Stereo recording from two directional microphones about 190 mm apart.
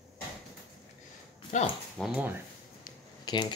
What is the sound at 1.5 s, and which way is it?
Speech, 40° left (ahead or behind).